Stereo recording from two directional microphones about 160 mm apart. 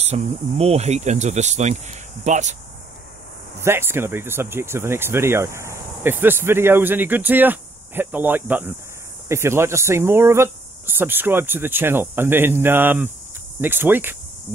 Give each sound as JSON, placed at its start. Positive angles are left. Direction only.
{"t": 0.0, "sound": "speech", "side_deg": -45}
{"t": 3.5, "sound": "speech", "side_deg": -15}